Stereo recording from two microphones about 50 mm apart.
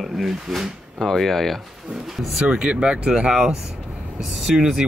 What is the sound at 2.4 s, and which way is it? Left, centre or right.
Speech, right.